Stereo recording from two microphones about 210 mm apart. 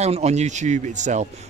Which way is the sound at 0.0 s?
30° right (ahead or behind).